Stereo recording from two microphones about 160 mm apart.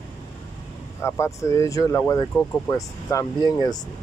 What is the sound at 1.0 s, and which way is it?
Speech, 15° left (ahead or behind).